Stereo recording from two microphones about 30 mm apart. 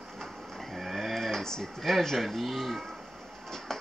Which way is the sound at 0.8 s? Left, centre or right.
Centre.